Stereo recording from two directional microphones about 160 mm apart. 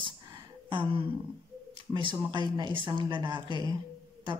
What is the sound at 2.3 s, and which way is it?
A woman's voice, 30° right (ahead or behind).